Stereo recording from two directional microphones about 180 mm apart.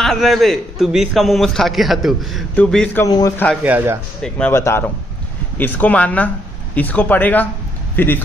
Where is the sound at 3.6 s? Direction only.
10° right (ahead or behind).